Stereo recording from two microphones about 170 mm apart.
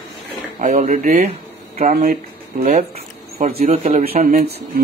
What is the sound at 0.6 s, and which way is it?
Speech, 45° right (ahead or behind).